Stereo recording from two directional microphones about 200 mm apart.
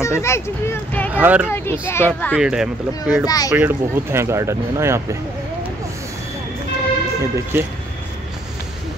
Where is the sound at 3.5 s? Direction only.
10° right (ahead or behind).